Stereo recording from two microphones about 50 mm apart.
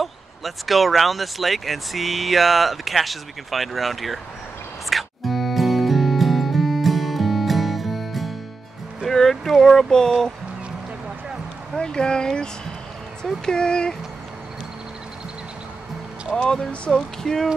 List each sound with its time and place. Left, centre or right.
0.0 s speech: centre
4.8 s music: centre
9.0 s a sound: centre
11.7 s speech: centre
13.5 s speech: centre
16.3 s speech: centre